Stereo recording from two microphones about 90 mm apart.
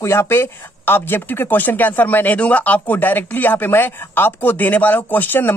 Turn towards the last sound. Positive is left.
turn(degrees=20)  # may be behind; listen again after turning